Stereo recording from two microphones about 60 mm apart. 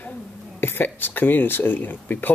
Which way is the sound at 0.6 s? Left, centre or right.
Left.